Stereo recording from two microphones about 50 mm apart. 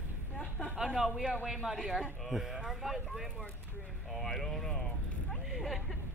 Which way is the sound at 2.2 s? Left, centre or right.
Centre.